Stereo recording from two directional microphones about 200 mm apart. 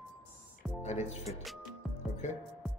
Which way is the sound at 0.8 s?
35° left (ahead or behind).